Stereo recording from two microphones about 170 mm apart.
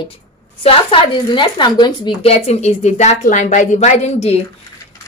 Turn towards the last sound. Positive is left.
turn(degrees=40)  # may be behind; listen again after turning